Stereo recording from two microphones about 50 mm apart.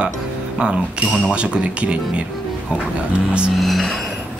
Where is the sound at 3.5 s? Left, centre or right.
Centre.